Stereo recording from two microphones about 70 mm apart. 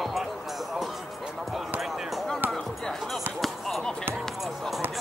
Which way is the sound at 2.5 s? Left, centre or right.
Centre.